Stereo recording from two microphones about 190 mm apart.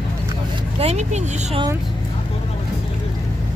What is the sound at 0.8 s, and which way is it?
Speech, 35° right (ahead or behind).